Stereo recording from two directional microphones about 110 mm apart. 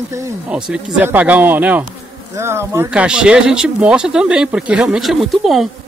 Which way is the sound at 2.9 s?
10° right (ahead or behind).